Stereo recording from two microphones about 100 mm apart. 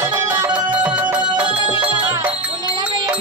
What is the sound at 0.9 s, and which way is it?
Music, 15° right (ahead or behind).